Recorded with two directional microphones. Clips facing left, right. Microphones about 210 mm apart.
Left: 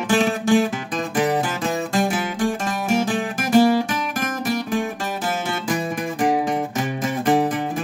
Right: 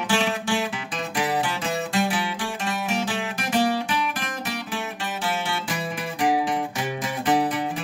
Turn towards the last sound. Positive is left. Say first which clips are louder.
# left 3 dB
turn(degrees=45)  # may be behind; listen again after turning